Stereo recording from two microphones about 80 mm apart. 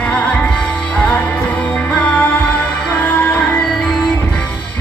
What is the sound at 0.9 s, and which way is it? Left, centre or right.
Music, centre.